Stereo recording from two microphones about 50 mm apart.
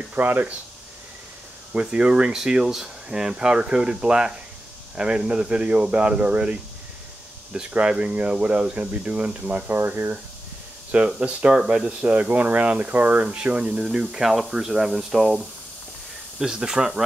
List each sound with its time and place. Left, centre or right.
0.1 s speech: right
1.7 s speech: right
7.7 s speech: right
11.1 s speech: right; by 15.3 s centre
16.3 s speech: centre